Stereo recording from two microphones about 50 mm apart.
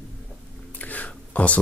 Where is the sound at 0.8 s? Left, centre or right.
Left.